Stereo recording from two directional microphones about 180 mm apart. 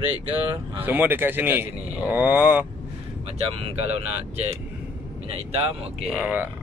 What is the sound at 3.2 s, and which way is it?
Speech, 35° right (ahead or behind).